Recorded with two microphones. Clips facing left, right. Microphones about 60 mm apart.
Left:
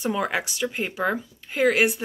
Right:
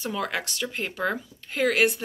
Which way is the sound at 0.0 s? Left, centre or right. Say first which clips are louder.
Left 4 dB; centre.